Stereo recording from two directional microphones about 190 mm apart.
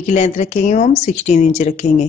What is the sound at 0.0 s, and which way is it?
A woman's voice, 35° left (ahead or behind).